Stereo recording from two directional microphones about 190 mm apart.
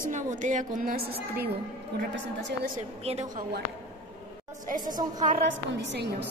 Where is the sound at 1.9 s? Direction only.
65° right (ahead or behind).